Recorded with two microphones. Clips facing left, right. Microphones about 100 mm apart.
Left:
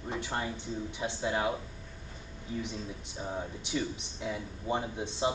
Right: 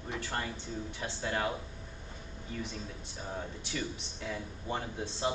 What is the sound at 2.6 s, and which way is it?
Speech, 20° left (ahead or behind).